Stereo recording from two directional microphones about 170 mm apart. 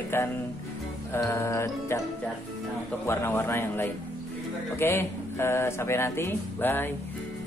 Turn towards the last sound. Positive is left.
turn(degrees=10)  # may be behind; listen again after turning